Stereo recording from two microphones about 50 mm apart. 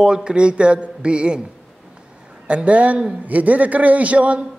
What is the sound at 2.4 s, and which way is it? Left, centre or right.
A man's voice, right.